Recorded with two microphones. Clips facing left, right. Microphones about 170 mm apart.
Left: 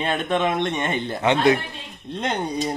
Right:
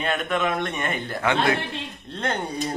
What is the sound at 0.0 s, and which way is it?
A man's voice, 30° left (ahead or behind).